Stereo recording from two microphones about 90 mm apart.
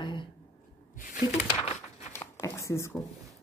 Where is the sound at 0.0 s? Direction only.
65° left (ahead or behind).